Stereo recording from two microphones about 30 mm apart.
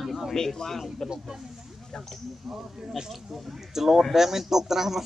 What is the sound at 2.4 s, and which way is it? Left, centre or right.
A man's voice, centre.